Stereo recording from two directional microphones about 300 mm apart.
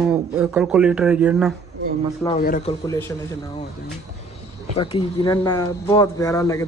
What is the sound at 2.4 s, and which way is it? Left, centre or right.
Speech, left.